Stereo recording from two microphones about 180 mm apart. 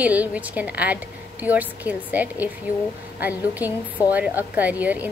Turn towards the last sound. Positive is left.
turn(degrees=-10)  # may be behind; listen again after turning